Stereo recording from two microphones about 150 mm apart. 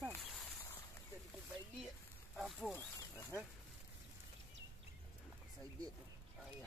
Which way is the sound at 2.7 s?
20° left (ahead or behind).